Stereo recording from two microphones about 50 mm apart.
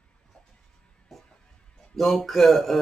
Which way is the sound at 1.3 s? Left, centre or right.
Centre.